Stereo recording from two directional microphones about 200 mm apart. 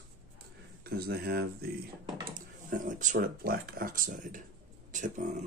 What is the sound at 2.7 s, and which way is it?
Speech, 40° right (ahead or behind).